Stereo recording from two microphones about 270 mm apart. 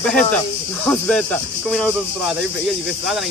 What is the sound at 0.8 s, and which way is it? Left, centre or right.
Speech, centre.